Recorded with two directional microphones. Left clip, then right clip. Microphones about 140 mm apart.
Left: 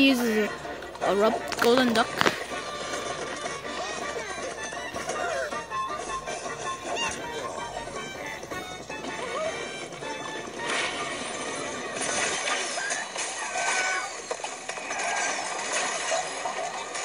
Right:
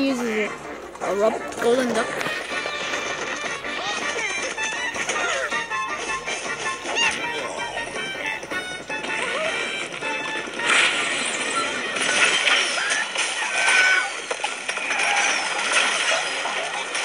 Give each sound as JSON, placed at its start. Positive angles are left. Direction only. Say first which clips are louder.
{"t": 1.2, "sound": "speech", "louder": "right 4 dB", "side_deg": 15}
{"t": 5.0, "sound": "music", "louder": "right 4 dB", "side_deg": -20}
{"t": 6.9, "sound": "music", "louder": "right 9 dB", "side_deg": -20}
{"t": 9.3, "sound": "music", "louder": "right 3 dB", "side_deg": -30}
{"t": 10.6, "sound": "a sound", "louder": "right 10 dB", "side_deg": -30}